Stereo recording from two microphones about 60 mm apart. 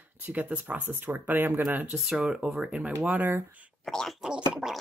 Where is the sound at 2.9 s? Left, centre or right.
Right.